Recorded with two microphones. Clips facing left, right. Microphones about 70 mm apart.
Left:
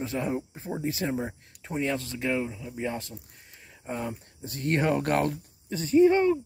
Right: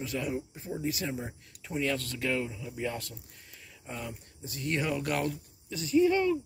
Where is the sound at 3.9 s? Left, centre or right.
Left.